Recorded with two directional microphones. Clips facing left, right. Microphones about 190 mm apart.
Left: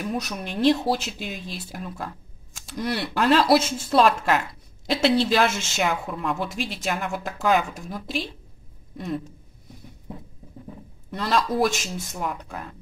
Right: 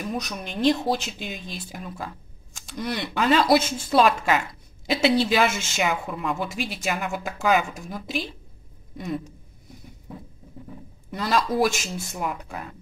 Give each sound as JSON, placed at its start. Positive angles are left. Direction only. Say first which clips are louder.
{"t": 0.0, "sound": "speech", "louder": "left 1 dB", "side_deg": 5}
{"t": 11.1, "sound": "speech", "louder": "even", "side_deg": 0}